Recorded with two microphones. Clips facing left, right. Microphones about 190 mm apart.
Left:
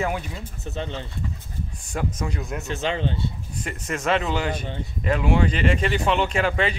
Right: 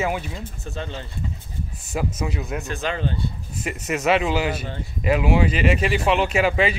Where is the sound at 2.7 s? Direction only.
20° left (ahead or behind).